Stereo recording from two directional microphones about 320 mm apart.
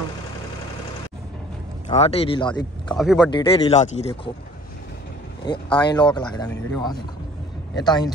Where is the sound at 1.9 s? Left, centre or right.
Centre.